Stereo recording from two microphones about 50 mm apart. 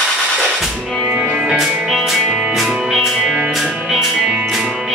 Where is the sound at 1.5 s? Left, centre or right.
Centre.